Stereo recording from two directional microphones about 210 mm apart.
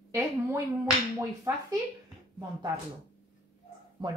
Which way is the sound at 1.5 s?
15° right (ahead or behind).